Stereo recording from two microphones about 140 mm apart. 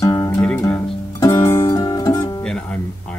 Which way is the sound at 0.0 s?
25° left (ahead or behind).